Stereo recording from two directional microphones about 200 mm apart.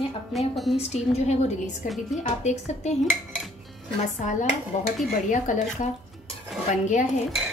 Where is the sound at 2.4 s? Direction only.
35° left (ahead or behind).